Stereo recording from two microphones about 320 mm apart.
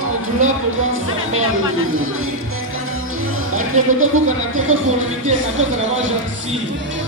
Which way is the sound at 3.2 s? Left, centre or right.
Right.